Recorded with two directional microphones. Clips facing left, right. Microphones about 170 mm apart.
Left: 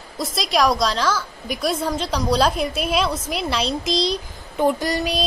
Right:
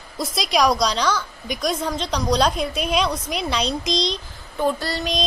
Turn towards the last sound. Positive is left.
turn(degrees=10)  # may be behind; listen again after turning